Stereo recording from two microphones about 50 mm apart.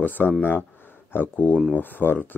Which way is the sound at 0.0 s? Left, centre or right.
Left.